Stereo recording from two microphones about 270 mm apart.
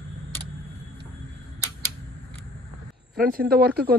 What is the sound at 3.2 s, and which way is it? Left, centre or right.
Speech, right.